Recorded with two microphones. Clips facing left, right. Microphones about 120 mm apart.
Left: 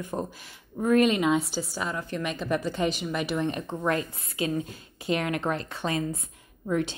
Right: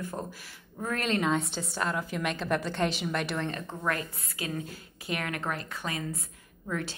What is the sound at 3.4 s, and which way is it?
A woman's voice, 15° left (ahead or behind).